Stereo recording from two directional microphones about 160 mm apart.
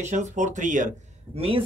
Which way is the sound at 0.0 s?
50° right (ahead or behind).